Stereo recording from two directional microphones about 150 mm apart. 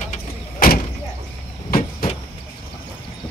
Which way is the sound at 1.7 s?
80° left.